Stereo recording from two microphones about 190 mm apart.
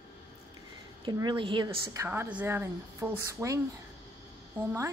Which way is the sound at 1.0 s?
25° right (ahead or behind).